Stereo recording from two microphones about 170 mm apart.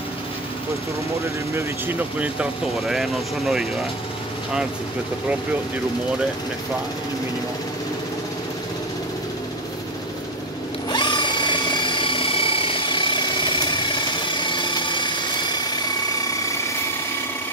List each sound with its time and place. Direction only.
1.5 s speech: 15° right (ahead or behind)
10.9 s drill: 25° left (ahead or behind)